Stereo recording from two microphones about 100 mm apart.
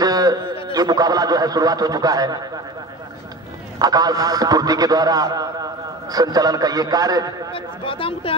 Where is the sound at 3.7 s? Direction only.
40° right (ahead or behind).